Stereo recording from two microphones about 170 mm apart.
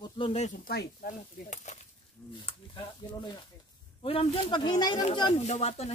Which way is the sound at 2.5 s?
30° left (ahead or behind).